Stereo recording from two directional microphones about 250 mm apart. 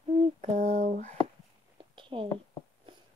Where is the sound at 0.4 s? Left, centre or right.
Right.